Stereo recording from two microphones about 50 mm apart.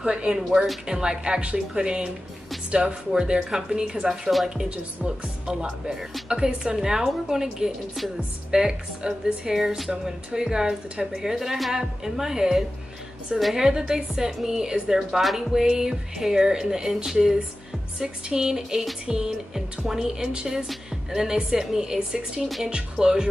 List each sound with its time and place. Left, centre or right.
0.0 s a woman's voice: centre
8.5 s a woman's voice: centre
13.7 s a woman's voice: centre